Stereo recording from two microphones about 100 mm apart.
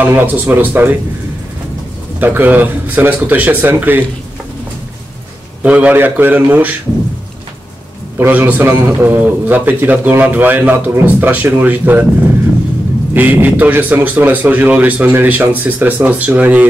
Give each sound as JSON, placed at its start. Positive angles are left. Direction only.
{"t": 0.0, "sound": "speech", "side_deg": -20}
{"t": 2.1, "sound": "speech", "side_deg": -20}
{"t": 5.6, "sound": "a man's voice", "side_deg": -15}
{"t": 8.2, "sound": "a man's voice", "side_deg": -15}
{"t": 13.1, "sound": "a man's voice", "side_deg": -15}